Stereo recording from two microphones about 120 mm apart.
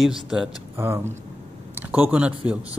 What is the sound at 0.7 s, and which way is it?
Speech, 20° right (ahead or behind).